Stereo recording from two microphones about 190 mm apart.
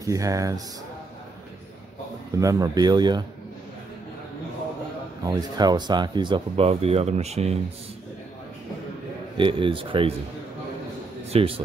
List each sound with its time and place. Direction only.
0.0 s speech: 15° right (ahead or behind)
2.3 s speech: 20° right (ahead or behind)
5.2 s speech: 20° right (ahead or behind)
9.4 s speech: 25° right (ahead or behind)
11.2 s a man's voice: 30° right (ahead or behind)